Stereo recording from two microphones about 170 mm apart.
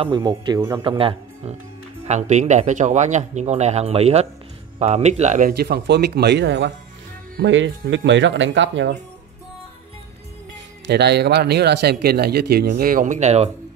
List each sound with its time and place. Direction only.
0.0 s a man's voice: 30° right (ahead or behind)
5.5 s speech: 70° right (ahead or behind); by 8.9 s 90° right
10.9 s speech: 75° right (ahead or behind); by 13.5 s 40° right (ahead or behind)